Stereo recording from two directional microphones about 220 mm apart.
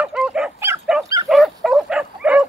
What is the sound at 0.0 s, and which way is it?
Dog, 5° right (ahead or behind).